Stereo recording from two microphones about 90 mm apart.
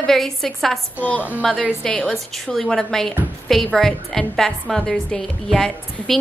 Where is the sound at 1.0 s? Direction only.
15° left (ahead or behind).